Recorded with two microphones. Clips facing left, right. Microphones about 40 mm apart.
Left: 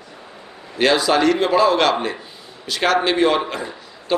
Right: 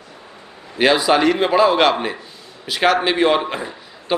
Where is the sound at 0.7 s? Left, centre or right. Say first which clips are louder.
Right 1 dB; centre.